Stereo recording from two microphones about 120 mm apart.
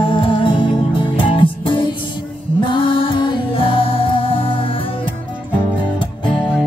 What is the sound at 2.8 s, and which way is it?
Music, 45° left (ahead or behind).